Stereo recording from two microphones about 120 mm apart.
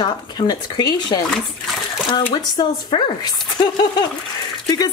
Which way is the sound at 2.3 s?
40° left (ahead or behind).